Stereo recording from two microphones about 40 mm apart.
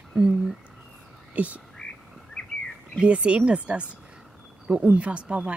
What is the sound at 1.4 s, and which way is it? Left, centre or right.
Speech, right.